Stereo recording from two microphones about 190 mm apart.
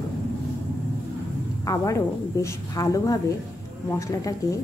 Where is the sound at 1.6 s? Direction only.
15° left (ahead or behind).